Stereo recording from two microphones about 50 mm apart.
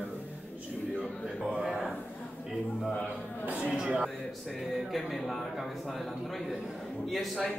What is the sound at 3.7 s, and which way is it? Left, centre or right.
A man's voice, centre.